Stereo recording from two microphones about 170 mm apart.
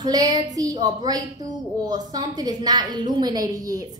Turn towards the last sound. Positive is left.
turn(degrees=-20)  # may be behind; listen again after turning